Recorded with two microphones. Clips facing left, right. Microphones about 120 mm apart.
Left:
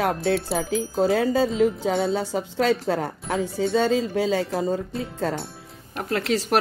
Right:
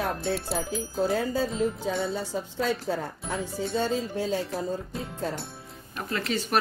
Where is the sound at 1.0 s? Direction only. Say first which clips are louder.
Left 6 dB; 85° left.